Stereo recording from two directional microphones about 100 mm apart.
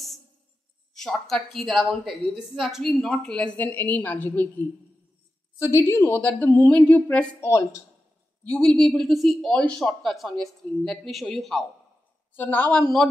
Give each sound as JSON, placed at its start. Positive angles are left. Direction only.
{"t": 0.9, "sound": "a woman's voice", "side_deg": 0}
{"t": 5.6, "sound": "a woman's voice", "side_deg": 25}
{"t": 7.3, "sound": "a woman's voice", "side_deg": 30}
{"t": 8.5, "sound": "a woman's voice", "side_deg": 10}
{"t": 12.4, "sound": "a woman's voice", "side_deg": 15}
{"t": 12.8, "sound": "a woman's voice", "side_deg": 5}